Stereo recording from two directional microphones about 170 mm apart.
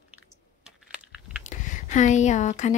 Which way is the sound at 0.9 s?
5° right (ahead or behind).